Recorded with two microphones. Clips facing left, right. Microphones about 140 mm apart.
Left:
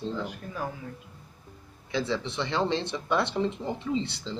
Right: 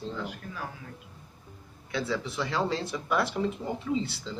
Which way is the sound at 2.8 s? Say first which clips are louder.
Left 1 dB; 25° left (ahead or behind).